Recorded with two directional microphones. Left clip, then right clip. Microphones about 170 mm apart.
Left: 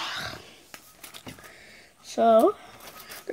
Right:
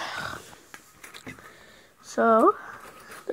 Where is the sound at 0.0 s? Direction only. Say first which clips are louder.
Even; 5° left (ahead or behind).